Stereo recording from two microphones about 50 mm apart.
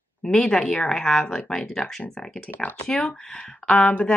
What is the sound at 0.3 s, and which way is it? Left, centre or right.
Speech, centre.